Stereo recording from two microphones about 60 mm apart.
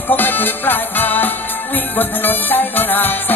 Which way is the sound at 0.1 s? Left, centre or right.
Left.